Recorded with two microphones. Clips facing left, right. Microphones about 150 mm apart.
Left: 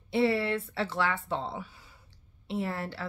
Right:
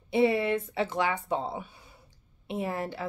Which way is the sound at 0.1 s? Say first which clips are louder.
Right 2 dB; 15° right (ahead or behind).